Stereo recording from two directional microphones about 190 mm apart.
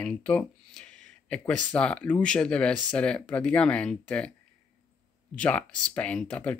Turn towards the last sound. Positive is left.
turn(degrees=5)  # may be behind; listen again after turning